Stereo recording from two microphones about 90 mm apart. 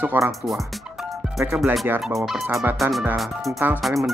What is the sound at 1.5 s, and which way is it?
Speech, 15° right (ahead or behind).